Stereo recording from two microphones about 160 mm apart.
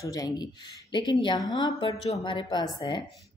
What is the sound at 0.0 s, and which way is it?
A woman's voice, 25° left (ahead or behind).